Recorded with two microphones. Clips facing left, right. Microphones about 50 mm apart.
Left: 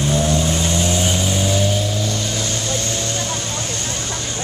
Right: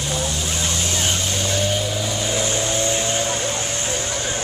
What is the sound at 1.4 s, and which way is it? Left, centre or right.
Vehicle, centre.